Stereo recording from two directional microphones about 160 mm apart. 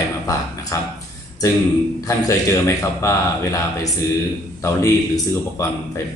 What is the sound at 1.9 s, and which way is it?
A man's voice, 20° left (ahead or behind).